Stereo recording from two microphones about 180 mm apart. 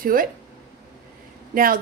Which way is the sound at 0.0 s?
50° right (ahead or behind).